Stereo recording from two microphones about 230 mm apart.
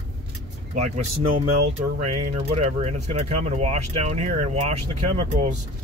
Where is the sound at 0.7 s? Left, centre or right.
Right.